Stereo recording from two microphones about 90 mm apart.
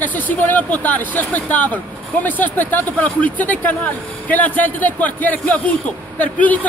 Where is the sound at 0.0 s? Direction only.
20° left (ahead or behind).